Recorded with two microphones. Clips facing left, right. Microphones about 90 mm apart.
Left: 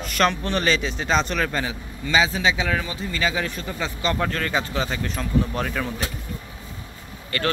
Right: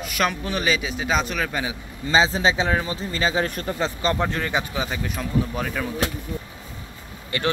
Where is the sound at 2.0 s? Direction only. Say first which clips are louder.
Right 1 dB; 30° right (ahead or behind).